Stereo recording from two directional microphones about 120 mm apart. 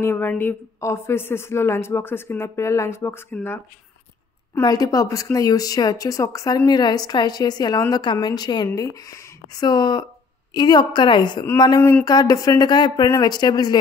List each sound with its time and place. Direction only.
0.0 s a woman's voice: 20° left (ahead or behind)
4.6 s speech: 30° left (ahead or behind)